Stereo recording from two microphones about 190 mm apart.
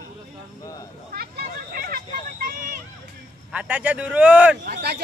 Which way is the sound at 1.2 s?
50° right (ahead or behind).